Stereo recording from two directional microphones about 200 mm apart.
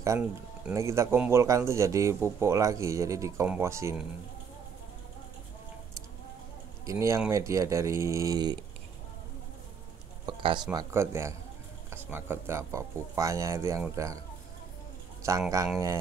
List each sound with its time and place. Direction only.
0.0 s speech: 15° right (ahead or behind)
6.9 s speech: 15° right (ahead or behind)
10.2 s speech: 25° right (ahead or behind)
15.2 s speech: 15° right (ahead or behind)